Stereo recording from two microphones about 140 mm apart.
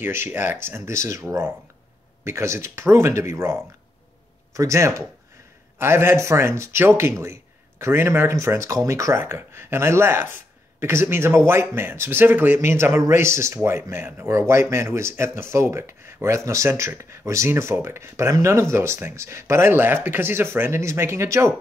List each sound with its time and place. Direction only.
0.0 s speech: 15° right (ahead or behind)
2.2 s a man's voice: 20° right (ahead or behind)
4.6 s a man's voice: 20° right (ahead or behind)